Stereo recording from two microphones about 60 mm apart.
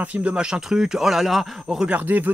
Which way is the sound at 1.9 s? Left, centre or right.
Right.